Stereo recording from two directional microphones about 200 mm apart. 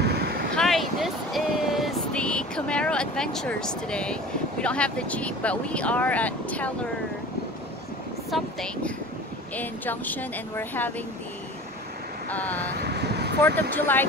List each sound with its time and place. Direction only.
0.0 s vehicle: 50° right (ahead or behind)
0.6 s speech: centre (ahead or behind)
8.3 s speech: centre (ahead or behind)
12.3 s speech: 10° left (ahead or behind)
12.7 s vehicle: 55° right (ahead or behind)
13.6 s speech: 10° left (ahead or behind)